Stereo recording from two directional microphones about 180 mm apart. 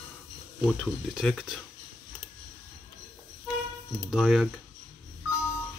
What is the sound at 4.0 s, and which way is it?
Speech, 5° right (ahead or behind).